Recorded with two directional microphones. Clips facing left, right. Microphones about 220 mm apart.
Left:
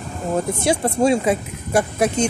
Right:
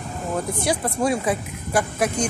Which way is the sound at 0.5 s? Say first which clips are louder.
Left 4 dB; 25° left (ahead or behind).